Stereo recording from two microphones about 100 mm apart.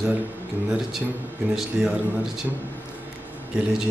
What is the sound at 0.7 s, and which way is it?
A man's voice, 5° right (ahead or behind).